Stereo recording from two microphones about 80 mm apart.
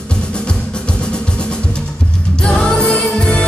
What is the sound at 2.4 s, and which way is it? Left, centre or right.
Music, centre.